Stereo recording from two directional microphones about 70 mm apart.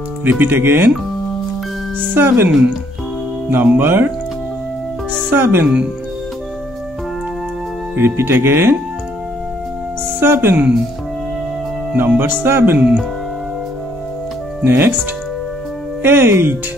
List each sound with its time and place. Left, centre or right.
0.2 s speech: right
2.0 s speech: right
5.3 s speech: right
7.9 s speech: right
10.2 s speech: right
11.9 s speech: right
14.6 s speech: right
16.0 s speech: right